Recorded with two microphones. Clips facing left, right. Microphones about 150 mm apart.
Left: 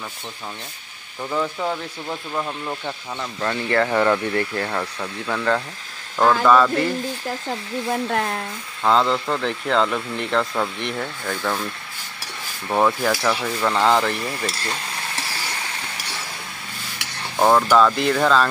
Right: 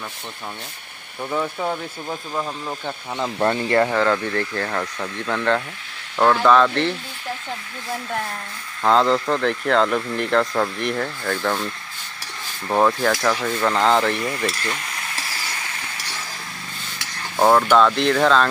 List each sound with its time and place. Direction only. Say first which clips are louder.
1.3 s speech: even; 10° right (ahead or behind)
3.2 s speech: right 7 dB; 35° right (ahead or behind)
3.6 s speech: even; 20° right (ahead or behind)
3.9 s speech: left 1 dB; 10° left (ahead or behind)
8.8 s speech: right 2 dB; centre (ahead or behind)
14.6 s speech: even; 30° left (ahead or behind)
17.4 s speech: right 1 dB; centre (ahead or behind)